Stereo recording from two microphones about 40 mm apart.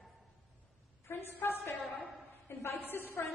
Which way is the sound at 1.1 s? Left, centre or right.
Left.